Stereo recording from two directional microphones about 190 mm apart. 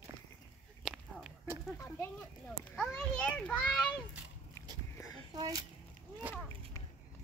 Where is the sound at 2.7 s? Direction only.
5° left (ahead or behind).